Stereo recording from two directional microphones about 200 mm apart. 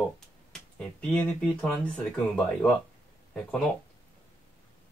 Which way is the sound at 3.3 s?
5° left (ahead or behind).